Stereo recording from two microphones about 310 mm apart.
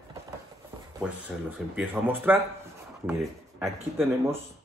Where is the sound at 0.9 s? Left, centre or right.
Centre.